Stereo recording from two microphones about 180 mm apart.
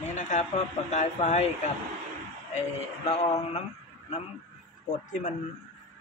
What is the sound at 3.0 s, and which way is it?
Speech, 35° left (ahead or behind).